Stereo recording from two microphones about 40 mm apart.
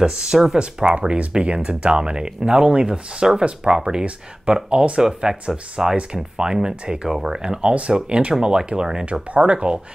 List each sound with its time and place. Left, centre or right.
0.0 s speech: centre
5.3 s speech: centre
6.3 s speech: centre